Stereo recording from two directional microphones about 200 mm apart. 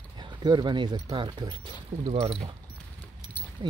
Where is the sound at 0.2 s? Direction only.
20° right (ahead or behind).